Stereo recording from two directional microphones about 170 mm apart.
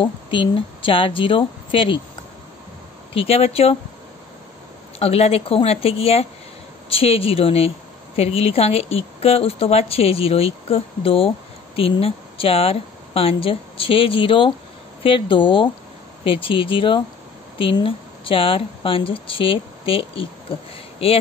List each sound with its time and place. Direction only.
0.0 s a woman's voice: 30° left (ahead or behind)
3.2 s a woman's voice: 35° left (ahead or behind)
4.9 s a woman's voice: 35° left (ahead or behind)